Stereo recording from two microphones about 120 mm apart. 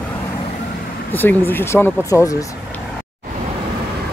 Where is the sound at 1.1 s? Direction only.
15° left (ahead or behind).